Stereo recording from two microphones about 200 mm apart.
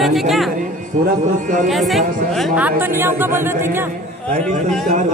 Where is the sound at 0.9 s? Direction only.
35° right (ahead or behind).